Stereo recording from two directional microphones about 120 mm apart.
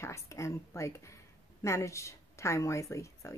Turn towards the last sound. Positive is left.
turn(degrees=25)  # may be behind; listen again after turning